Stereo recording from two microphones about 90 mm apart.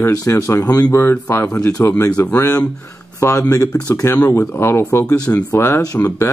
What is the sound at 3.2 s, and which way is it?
Speech, 35° left (ahead or behind).